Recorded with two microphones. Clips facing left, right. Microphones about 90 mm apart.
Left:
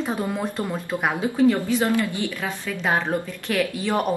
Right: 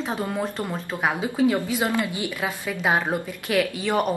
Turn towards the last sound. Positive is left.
turn(degrees=0)  # may be behind; listen again after turning